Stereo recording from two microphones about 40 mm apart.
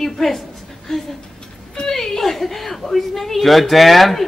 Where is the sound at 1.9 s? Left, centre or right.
Centre.